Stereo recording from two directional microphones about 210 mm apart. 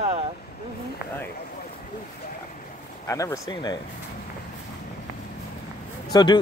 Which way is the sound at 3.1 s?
15° left (ahead or behind).